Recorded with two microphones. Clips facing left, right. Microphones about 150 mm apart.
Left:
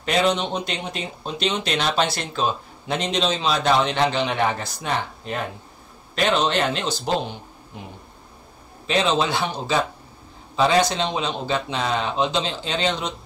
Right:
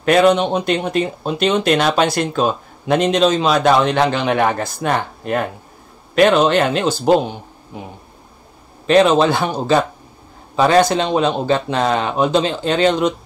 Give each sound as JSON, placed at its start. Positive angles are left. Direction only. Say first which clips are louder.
{"t": 0.0, "sound": "speech", "louder": "right 8 dB", "side_deg": -60}
{"t": 8.8, "sound": "speech", "louder": "right 9 dB", "side_deg": -55}